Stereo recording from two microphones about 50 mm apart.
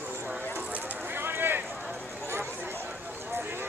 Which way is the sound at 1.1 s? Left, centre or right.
Right.